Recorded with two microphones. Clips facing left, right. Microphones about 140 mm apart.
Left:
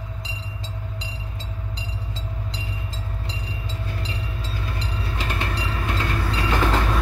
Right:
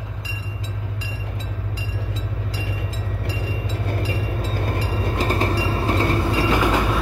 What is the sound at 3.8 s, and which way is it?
Train, 55° right (ahead or behind).